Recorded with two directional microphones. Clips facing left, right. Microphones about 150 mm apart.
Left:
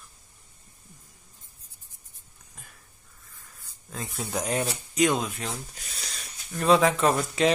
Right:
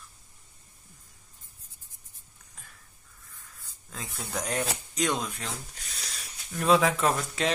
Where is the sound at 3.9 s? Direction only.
10° left (ahead or behind).